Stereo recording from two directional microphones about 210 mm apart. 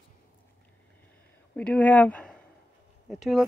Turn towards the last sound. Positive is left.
turn(degrees=0)  # may be behind; listen again after turning